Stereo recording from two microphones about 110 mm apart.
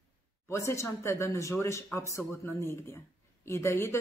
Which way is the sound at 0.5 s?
25° left (ahead or behind).